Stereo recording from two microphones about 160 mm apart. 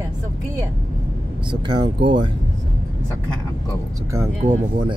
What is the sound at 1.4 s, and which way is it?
Speech, 30° right (ahead or behind).